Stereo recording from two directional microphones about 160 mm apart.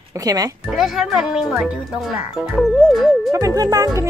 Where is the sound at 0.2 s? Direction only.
20° right (ahead or behind).